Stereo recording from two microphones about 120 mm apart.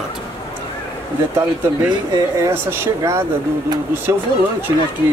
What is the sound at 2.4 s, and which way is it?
Speech, 20° right (ahead or behind).